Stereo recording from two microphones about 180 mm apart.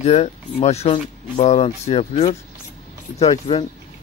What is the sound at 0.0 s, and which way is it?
Speech, 35° left (ahead or behind).